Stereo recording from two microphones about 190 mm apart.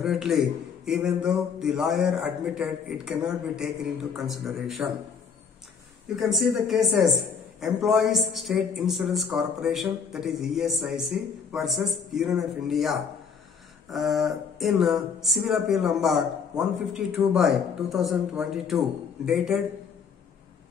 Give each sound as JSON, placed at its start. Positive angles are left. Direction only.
{"t": 0.0, "sound": "speech", "side_deg": 0}
{"t": 4.8, "sound": "speech", "side_deg": -5}
{"t": 6.1, "sound": "speech", "side_deg": 0}